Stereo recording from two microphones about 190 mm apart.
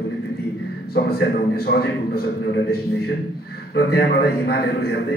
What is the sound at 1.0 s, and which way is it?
A man's voice, 55° left (ahead or behind).